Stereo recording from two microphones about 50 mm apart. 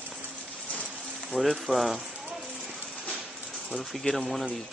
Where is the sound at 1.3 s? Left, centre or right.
Centre.